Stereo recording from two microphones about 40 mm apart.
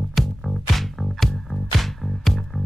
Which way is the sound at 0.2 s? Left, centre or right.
Centre.